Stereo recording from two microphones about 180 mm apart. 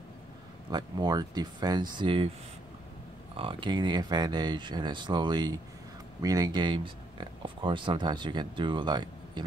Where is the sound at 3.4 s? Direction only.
30° right (ahead or behind).